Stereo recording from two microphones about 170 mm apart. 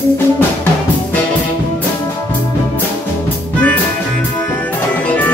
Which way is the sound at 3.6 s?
10° left (ahead or behind).